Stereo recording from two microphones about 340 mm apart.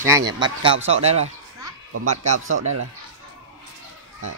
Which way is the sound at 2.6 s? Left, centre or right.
Right.